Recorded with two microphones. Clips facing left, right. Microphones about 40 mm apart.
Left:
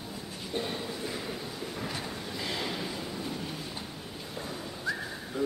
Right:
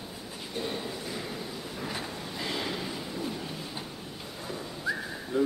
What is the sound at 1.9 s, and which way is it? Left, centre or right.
Train, centre.